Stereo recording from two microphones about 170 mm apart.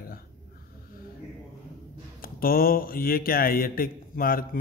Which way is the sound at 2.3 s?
60° left (ahead or behind).